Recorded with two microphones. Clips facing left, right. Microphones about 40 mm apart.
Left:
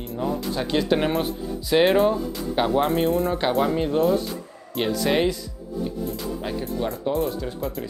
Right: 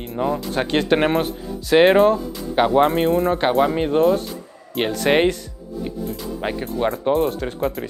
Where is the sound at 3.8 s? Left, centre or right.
Right.